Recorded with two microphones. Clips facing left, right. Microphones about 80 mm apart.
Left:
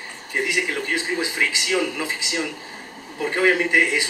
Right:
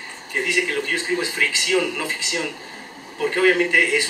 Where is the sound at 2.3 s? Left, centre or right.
Centre.